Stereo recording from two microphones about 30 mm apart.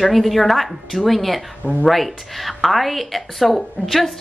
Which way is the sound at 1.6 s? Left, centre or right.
Left.